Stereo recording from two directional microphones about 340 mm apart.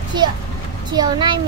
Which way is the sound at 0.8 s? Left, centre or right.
Centre.